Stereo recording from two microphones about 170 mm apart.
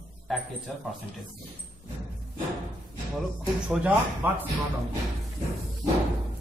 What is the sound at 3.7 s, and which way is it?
Speech, 10° right (ahead or behind).